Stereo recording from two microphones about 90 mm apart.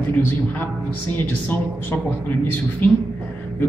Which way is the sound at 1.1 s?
20° left (ahead or behind).